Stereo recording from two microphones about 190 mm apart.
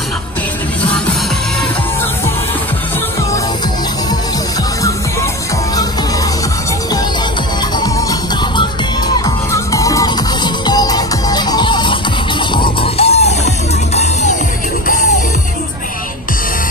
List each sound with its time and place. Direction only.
7.8 s music: 20° left (ahead or behind); by 14.3 s 35° left (ahead or behind)